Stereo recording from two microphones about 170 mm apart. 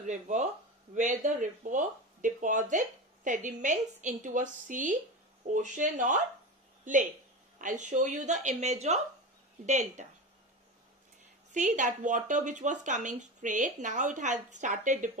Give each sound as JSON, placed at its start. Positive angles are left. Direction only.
{"t": 0.0, "sound": "speech", "side_deg": -45}
{"t": 6.8, "sound": "a sound", "side_deg": -50}
{"t": 7.6, "sound": "speech", "side_deg": -45}
{"t": 11.5, "sound": "speech", "side_deg": -45}